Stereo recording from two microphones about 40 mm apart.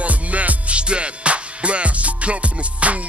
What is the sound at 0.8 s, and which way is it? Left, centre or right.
Music, right.